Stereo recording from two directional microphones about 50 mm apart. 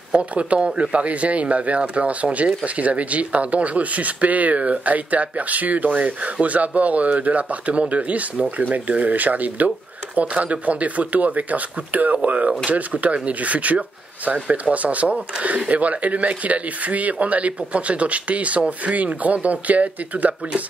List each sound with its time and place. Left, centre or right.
0.3 s speech: right